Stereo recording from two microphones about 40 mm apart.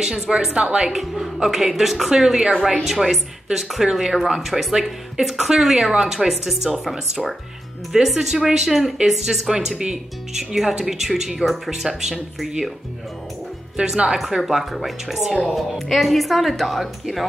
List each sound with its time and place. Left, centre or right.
0.0 s a woman's voice: centre
0.7 s speech: centre
13.7 s a woman's voice: centre
14.4 s speech: centre